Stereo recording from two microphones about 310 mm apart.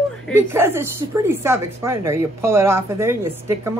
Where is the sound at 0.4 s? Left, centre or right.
Centre.